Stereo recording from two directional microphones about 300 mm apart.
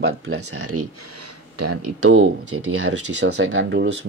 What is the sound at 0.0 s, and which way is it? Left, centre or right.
Speech, right.